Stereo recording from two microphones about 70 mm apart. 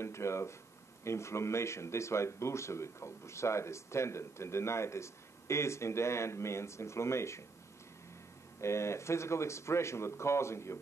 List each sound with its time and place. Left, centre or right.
0.0 s speech: left
8.5 s speech: left